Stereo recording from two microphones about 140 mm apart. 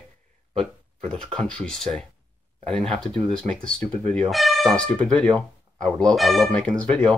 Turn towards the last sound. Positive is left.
turn(degrees=10)  # may be behind; listen again after turning